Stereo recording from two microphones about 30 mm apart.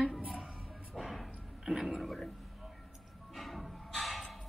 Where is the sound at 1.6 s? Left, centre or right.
Centre.